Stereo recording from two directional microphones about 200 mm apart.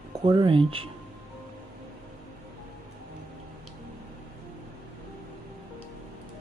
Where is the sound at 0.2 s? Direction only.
25° right (ahead or behind).